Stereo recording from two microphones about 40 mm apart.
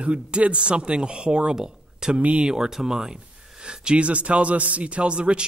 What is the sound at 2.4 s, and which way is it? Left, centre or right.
A man's voice, centre.